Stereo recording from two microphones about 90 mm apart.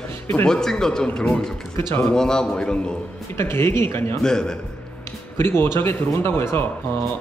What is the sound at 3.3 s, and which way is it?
Speech, 30° left (ahead or behind).